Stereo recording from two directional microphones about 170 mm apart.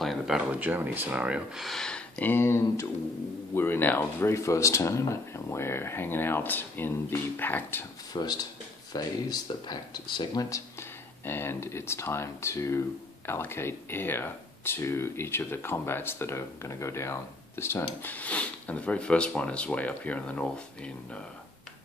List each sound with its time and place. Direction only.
0.0 s speech: centre (ahead or behind)
8.1 s speech: 25° left (ahead or behind); by 21.2 s 5° left (ahead or behind)